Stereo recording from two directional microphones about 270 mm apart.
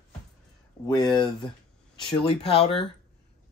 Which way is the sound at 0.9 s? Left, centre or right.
Centre.